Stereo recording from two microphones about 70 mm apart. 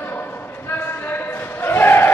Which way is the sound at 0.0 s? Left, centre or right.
Left.